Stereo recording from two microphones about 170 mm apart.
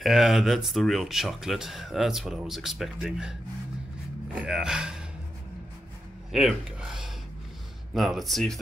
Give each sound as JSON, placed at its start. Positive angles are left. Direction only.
{"t": 0.0, "sound": "speech", "side_deg": 0}
{"t": 4.4, "sound": "speech", "side_deg": -5}
{"t": 6.3, "sound": "speech", "side_deg": 0}